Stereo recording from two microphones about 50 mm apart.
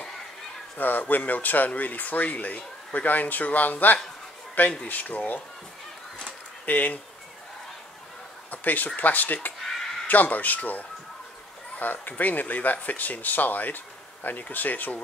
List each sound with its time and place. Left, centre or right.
0.7 s speech: left
6.6 s speech: left
8.5 s speech: left